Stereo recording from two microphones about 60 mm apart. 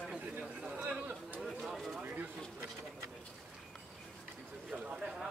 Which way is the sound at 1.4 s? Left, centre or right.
Centre.